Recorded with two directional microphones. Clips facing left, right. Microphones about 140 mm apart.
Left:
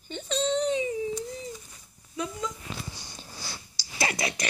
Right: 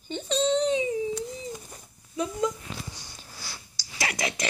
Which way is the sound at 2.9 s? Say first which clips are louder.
Left 2 dB; 20° left (ahead or behind).